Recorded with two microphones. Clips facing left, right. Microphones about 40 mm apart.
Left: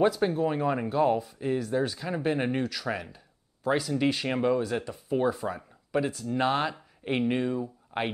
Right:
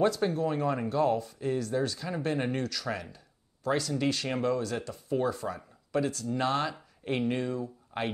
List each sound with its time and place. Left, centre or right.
0.0 s speech: centre